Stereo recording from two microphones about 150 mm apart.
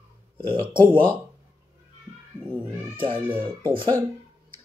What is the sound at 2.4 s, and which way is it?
Cat, 15° right (ahead or behind).